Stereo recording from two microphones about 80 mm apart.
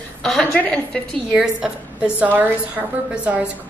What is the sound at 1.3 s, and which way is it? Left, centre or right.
A woman's voice, centre.